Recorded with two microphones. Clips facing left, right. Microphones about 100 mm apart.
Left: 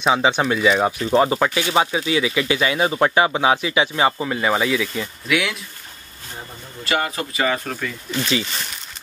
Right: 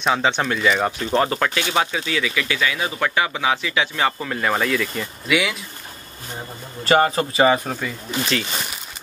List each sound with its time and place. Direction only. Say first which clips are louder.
0.0 s speech: left 2 dB; 10° left (ahead or behind)
6.8 s speech: right 6 dB; 40° right (ahead or behind)
7.5 s speech: right 2 dB; 15° right (ahead or behind)